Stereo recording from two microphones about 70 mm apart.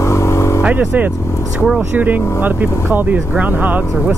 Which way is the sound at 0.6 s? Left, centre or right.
Centre.